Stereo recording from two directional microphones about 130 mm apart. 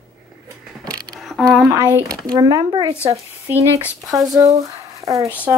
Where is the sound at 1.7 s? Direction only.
20° right (ahead or behind).